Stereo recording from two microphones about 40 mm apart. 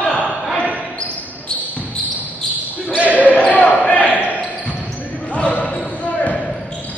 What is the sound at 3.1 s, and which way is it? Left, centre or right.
Basketball bounce, left.